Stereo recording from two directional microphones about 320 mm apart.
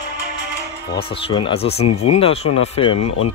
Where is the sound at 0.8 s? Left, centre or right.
Centre.